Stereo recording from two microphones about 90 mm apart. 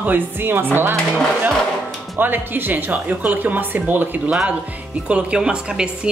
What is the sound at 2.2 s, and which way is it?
A woman's voice, 20° right (ahead or behind).